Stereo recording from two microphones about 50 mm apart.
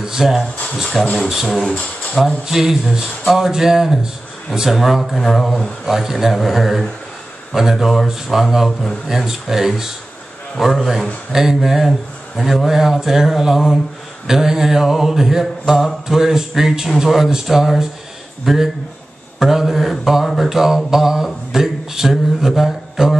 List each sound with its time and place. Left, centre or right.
0.0 s speech: centre
11.4 s mantra: centre
18.4 s speech: centre
19.4 s mantra: centre
22.6 s a sound: centre